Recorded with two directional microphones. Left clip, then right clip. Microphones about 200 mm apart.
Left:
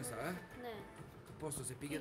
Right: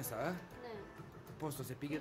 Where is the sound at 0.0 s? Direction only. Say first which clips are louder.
Right 3 dB; 15° right (ahead or behind).